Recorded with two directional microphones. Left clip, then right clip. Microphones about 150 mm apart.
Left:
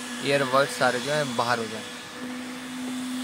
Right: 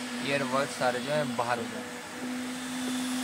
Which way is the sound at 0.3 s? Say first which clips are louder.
Left 7 dB; 30° left (ahead or behind).